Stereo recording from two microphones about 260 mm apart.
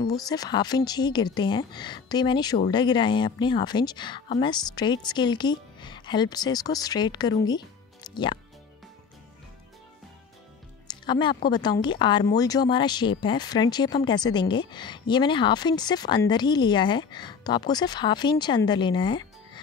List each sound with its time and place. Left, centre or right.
0.0 s speech: centre
10.9 s speech: centre